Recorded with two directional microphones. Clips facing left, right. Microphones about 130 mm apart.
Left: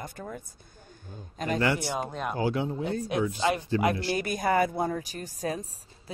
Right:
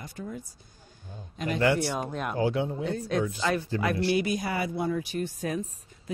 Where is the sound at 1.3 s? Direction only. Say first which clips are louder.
Left 1 dB; 40° left (ahead or behind).